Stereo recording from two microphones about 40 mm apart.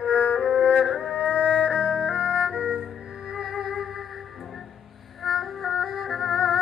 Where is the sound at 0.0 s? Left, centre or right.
Centre.